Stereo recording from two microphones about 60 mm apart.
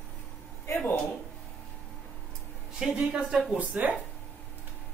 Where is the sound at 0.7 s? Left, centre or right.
Left.